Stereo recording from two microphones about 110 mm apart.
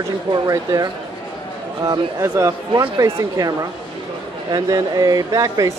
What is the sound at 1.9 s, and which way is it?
Speech, 25° right (ahead or behind).